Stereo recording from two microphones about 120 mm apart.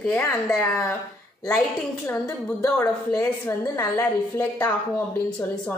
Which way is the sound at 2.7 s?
20° left (ahead or behind).